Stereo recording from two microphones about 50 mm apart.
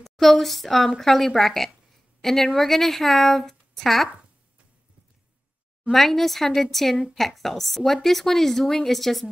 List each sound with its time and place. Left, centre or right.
0.0 s speech: centre
5.9 s speech: centre